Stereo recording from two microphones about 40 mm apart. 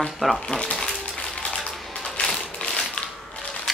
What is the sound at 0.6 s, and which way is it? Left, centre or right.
Speech, centre.